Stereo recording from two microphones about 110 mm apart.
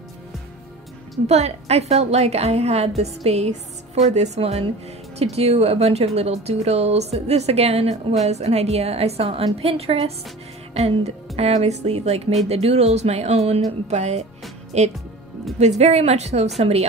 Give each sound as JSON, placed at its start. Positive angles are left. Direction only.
{"t": 1.2, "sound": "speech", "side_deg": -75}
{"t": 3.0, "sound": "music", "side_deg": -75}
{"t": 4.1, "sound": "speech", "side_deg": -80}